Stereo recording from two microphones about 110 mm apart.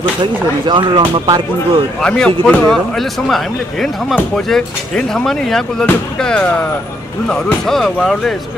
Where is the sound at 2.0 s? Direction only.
10° left (ahead or behind).